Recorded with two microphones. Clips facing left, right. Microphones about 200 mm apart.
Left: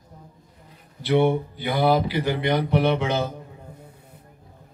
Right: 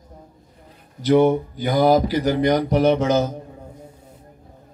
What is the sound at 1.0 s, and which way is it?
Speech, 40° right (ahead or behind).